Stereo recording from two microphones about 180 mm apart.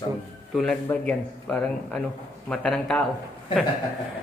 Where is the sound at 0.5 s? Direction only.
5° left (ahead or behind).